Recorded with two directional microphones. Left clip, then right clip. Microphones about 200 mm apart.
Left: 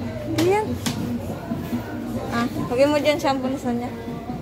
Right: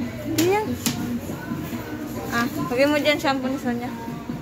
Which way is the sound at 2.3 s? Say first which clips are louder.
Right 1 dB; 10° left (ahead or behind).